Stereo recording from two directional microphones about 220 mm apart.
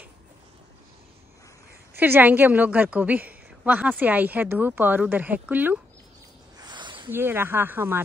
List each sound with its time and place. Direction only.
2.0 s a woman's voice: 10° right (ahead or behind)
6.6 s a sound: 20° right (ahead or behind)
7.1 s a woman's voice: 10° right (ahead or behind)